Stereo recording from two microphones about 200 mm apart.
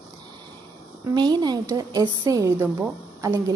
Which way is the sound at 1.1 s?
20° right (ahead or behind).